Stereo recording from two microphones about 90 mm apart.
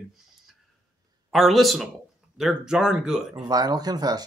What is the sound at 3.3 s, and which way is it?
Speech, 45° right (ahead or behind).